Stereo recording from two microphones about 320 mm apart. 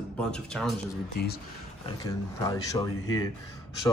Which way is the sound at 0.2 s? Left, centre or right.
Centre.